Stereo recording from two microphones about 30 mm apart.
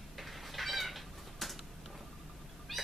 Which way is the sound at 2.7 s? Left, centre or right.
Centre.